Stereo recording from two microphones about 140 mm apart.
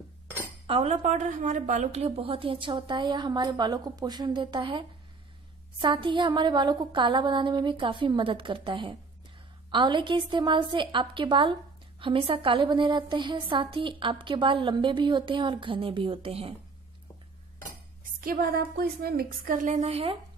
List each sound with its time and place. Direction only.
0.7 s a woman's voice: 50° right (ahead or behind)
18.2 s a woman's voice: 90° right; by 20.2 s 45° right (ahead or behind)